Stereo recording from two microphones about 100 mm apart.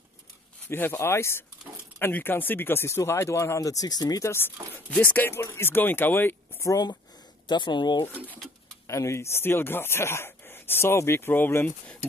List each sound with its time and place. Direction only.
0.7 s speech: 20° left (ahead or behind); by 4.3 s 40° left (ahead or behind)
4.7 s speech: 15° left (ahead or behind)
6.6 s speech: 40° left (ahead or behind)
7.4 s speech: 50° left (ahead or behind)
8.8 s speech: 30° left (ahead or behind)